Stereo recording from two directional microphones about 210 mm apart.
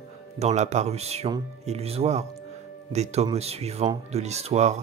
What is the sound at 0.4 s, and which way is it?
Speech, 30° right (ahead or behind).